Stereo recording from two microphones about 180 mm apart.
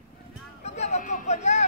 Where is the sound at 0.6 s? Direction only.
40° left (ahead or behind).